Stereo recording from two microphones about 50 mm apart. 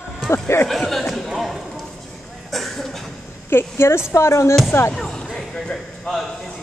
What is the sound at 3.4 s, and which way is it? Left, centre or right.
A woman's voice, left.